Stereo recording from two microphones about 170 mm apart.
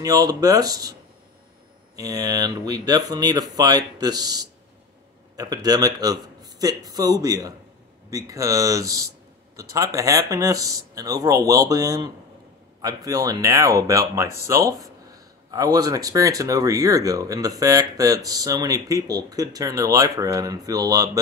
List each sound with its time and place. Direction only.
0.0 s speech: 20° right (ahead or behind)
2.0 s speech: 20° right (ahead or behind)